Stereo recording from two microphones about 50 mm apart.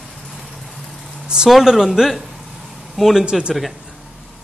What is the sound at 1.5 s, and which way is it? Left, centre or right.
Speech, centre.